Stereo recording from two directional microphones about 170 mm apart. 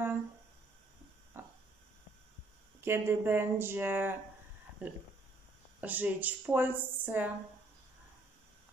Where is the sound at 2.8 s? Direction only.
15° right (ahead or behind).